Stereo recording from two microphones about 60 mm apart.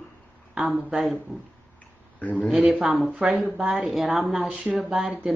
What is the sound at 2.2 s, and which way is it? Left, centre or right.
Speech, left.